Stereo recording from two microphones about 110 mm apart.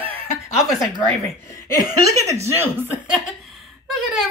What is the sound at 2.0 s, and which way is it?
Speech, 30° right (ahead or behind).